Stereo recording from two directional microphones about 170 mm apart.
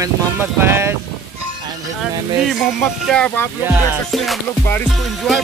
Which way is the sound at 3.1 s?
5° left (ahead or behind).